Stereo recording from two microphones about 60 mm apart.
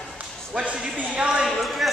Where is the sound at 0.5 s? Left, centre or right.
Centre.